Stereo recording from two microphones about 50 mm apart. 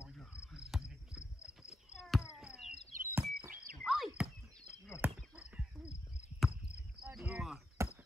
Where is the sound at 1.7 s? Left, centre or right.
Centre.